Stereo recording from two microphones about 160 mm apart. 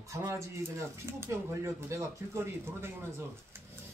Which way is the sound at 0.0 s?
20° right (ahead or behind).